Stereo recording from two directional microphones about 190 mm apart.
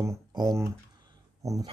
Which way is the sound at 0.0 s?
15° right (ahead or behind).